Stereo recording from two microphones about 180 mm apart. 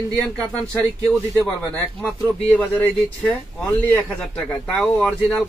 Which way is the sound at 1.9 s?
10° left (ahead or behind).